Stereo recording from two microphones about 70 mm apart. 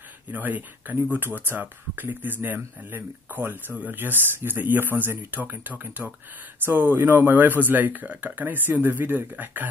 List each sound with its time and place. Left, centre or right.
0.3 s speech: right